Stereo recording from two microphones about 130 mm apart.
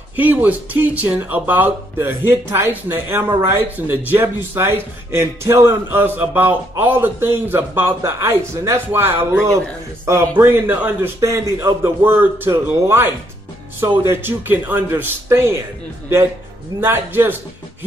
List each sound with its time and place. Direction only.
0.1 s a man's voice: 15° right (ahead or behind)
16.8 s speech: 15° right (ahead or behind)